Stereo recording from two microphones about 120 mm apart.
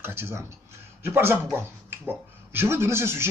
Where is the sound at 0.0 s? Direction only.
20° right (ahead or behind).